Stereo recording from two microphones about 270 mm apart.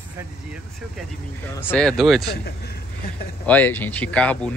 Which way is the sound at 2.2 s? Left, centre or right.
Left.